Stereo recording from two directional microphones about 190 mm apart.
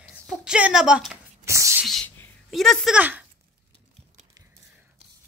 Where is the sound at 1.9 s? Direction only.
Centre (ahead or behind).